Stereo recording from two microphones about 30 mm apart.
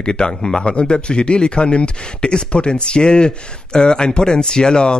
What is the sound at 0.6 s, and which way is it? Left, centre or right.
Speech, left.